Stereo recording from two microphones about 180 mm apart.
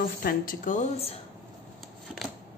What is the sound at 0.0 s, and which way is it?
A woman's voice, 55° left (ahead or behind).